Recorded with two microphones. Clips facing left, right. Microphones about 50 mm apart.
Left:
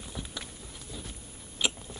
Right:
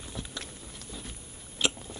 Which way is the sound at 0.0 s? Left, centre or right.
Centre.